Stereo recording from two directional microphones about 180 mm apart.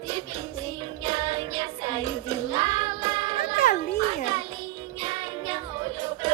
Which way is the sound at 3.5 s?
40° left (ahead or behind).